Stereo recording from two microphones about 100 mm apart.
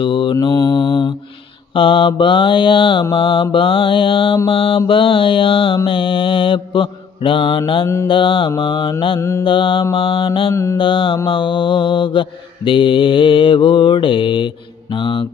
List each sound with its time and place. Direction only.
0.0 s mantra: 55° left (ahead or behind)
0.4 s mantra: 30° left (ahead or behind)
1.7 s mantra: 60° left (ahead or behind)
10.5 s mantra: 25° left (ahead or behind)
10.8 s mantra: 60° left (ahead or behind)